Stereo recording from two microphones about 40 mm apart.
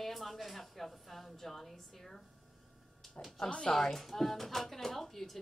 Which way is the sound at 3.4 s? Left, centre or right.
Left.